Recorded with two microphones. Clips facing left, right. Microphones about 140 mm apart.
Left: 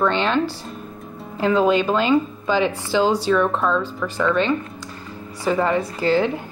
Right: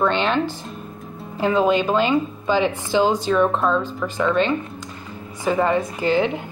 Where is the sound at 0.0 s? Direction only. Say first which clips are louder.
Even; 20° right (ahead or behind).